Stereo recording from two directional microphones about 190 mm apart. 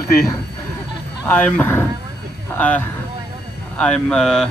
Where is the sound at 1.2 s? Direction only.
10° left (ahead or behind).